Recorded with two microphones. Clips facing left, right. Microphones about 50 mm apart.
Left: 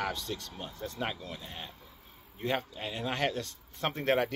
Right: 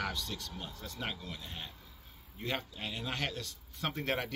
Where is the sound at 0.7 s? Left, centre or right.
Left.